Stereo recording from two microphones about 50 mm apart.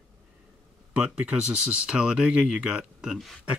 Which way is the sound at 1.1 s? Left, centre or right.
Centre.